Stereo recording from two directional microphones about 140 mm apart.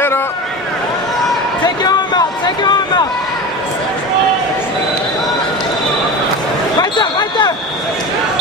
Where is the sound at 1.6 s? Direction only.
30° left (ahead or behind).